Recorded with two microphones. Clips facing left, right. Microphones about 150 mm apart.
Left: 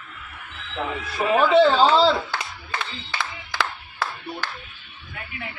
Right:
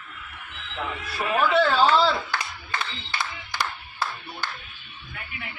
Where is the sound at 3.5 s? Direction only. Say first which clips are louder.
Left 3 dB; 90° left.